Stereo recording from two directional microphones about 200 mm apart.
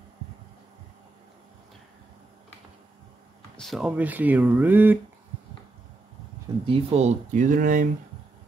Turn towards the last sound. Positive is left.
turn(degrees=-40)  # may be behind; listen again after turning